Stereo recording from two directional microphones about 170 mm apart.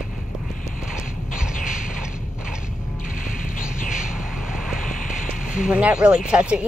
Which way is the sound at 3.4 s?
55° left (ahead or behind).